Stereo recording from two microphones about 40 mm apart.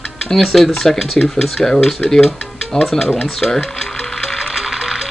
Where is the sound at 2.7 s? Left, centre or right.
Centre.